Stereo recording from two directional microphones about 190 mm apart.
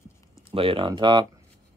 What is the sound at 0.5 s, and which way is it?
Speech, 30° right (ahead or behind).